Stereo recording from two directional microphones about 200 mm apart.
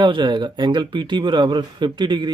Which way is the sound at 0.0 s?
25° right (ahead or behind).